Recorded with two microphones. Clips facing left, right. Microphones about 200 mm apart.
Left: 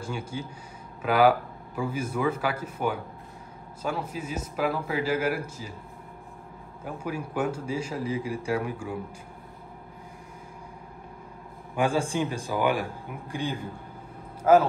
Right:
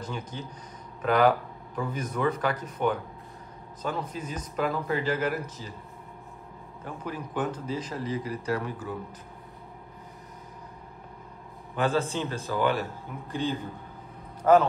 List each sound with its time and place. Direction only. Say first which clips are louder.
0.0 s speech: left 2 dB; 10° left (ahead or behind)
6.8 s speech: left 3 dB; 10° left (ahead or behind)
11.7 s a man's voice: left 1 dB; 10° left (ahead or behind)